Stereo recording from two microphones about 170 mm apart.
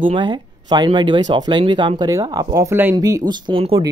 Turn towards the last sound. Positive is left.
turn(degrees=-30)  # may be behind; listen again after turning